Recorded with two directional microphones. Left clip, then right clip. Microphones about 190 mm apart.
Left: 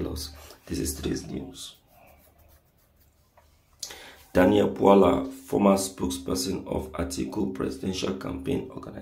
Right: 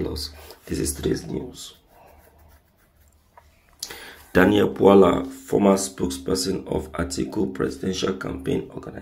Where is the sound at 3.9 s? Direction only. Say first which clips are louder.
Right 4 dB; 15° right (ahead or behind).